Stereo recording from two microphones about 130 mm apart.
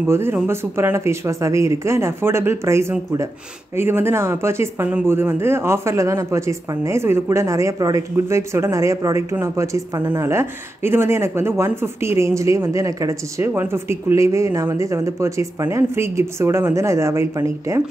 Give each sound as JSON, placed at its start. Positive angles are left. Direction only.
{"t": 0.0, "sound": "speech", "side_deg": -20}